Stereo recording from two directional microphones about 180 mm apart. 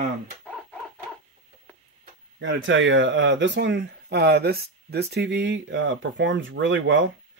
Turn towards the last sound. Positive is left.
turn(degrees=-90)